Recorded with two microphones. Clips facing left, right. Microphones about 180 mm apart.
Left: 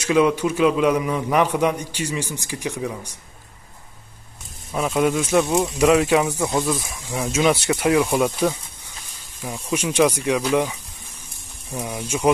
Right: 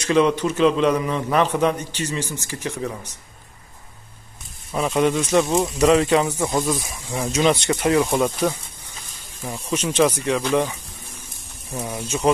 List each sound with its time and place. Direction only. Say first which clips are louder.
0.0 s a man's voice: even; 10° left (ahead or behind)
4.7 s a man's voice: even; centre (ahead or behind)